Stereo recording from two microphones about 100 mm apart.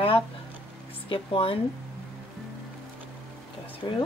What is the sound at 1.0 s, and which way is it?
Speech, 60° left (ahead or behind).